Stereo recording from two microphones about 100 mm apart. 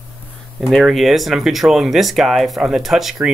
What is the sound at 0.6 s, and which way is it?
Speech, centre (ahead or behind).